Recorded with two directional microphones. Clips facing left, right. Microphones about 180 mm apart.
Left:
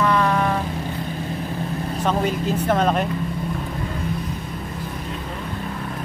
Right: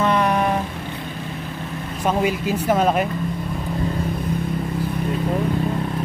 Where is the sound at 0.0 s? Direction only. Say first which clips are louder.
Right 1 dB; 20° right (ahead or behind).